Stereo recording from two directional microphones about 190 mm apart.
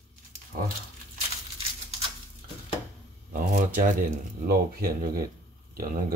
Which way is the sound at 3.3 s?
45° right (ahead or behind).